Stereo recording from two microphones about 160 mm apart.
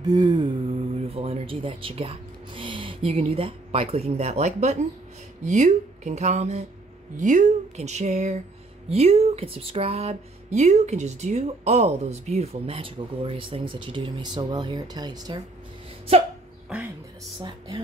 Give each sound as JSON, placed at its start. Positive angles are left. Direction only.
{"t": 0.0, "sound": "speech", "side_deg": -25}
{"t": 17.4, "sound": "speech", "side_deg": -25}